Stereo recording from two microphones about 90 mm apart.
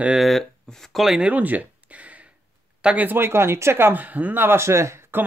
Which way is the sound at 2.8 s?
10° right (ahead or behind).